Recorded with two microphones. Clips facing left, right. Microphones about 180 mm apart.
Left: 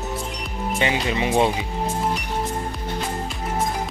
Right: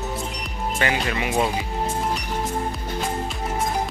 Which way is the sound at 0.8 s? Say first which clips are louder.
Left 2 dB; 20° left (ahead or behind).